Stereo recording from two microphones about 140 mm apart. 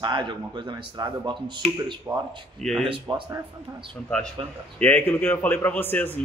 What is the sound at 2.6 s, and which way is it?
Speech, centre (ahead or behind).